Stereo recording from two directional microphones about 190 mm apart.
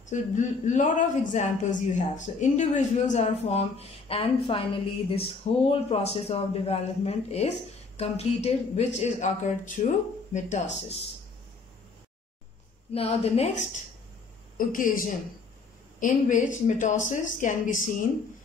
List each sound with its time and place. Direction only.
0.1 s speech: 40° left (ahead or behind)
12.9 s speech: 30° left (ahead or behind)
14.7 s speech: 45° left (ahead or behind)